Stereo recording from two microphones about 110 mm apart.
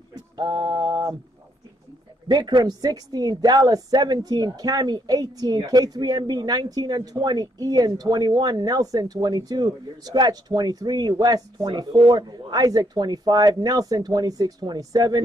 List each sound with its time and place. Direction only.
0.1 s mantra: 45° right (ahead or behind)
2.2 s a woman's voice: 40° right (ahead or behind)